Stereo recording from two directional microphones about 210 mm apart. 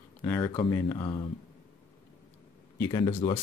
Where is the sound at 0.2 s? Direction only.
15° left (ahead or behind).